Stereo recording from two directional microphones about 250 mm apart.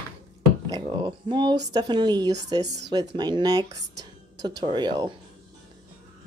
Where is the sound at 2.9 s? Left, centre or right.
Centre.